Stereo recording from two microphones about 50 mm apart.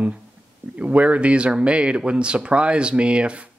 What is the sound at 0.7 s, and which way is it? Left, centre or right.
Speech, right.